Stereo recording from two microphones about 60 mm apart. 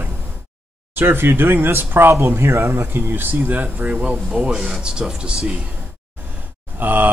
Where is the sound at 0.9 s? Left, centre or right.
Right.